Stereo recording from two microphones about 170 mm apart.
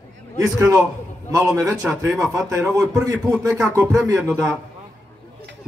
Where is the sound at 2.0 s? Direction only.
15° right (ahead or behind).